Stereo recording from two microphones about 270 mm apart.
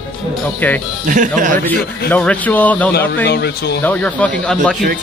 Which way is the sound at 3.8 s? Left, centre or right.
Centre.